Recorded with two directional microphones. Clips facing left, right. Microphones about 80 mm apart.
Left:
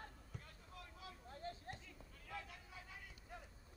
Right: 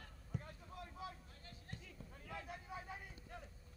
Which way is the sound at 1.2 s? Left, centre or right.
Left.